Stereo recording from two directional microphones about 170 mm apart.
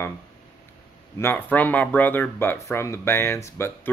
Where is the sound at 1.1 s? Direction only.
10° left (ahead or behind).